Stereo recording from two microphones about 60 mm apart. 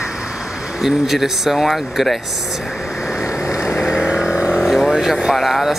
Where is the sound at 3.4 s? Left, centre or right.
Left.